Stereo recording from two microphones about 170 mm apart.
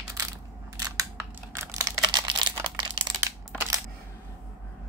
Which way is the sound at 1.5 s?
20° right (ahead or behind).